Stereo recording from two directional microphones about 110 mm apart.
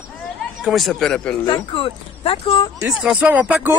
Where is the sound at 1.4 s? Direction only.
50° left (ahead or behind).